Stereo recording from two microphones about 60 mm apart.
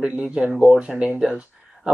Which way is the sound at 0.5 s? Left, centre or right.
Centre.